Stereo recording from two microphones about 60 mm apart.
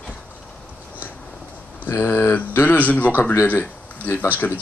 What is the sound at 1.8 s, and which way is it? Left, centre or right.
Speech, left.